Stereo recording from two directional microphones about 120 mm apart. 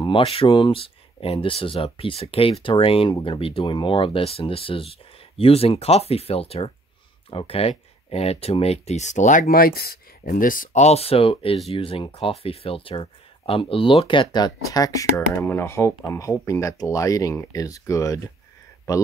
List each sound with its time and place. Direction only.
0.0 s speech: 50° left (ahead or behind); by 9.5 s 90° left
10.7 s speech: 65° left (ahead or behind); by 18.3 s 30° left (ahead or behind)